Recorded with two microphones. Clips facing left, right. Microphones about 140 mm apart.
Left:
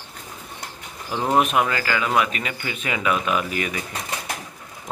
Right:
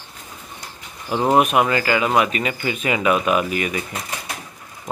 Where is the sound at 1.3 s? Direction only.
10° right (ahead or behind).